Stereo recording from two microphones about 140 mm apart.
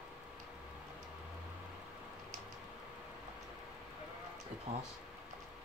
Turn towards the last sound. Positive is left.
turn(degrees=-55)  # may be behind; listen again after turning